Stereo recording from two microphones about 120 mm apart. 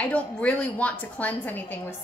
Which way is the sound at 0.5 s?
10° left (ahead or behind).